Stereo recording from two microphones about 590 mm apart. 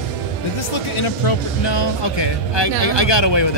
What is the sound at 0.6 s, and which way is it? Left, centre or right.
Speech, left.